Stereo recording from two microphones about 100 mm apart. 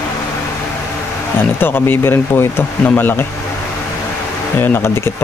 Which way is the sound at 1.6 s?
20° left (ahead or behind).